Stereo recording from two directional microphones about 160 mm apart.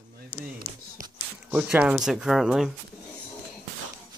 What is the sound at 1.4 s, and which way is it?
Speech, 10° right (ahead or behind).